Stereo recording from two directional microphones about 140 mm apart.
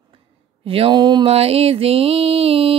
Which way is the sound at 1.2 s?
45° right (ahead or behind).